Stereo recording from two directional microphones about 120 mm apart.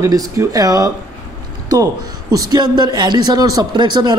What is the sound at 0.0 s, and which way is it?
Speech, 30° right (ahead or behind).